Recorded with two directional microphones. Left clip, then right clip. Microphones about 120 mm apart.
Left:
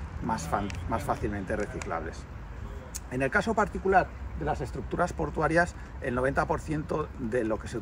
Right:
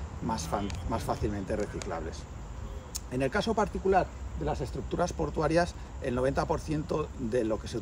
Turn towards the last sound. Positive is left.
turn(degrees=-10)  # may be behind; listen again after turning